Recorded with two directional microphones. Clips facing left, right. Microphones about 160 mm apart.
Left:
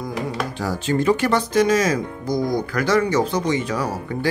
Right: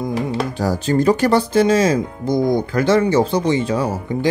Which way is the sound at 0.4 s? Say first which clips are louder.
Right 5 dB; 40° right (ahead or behind).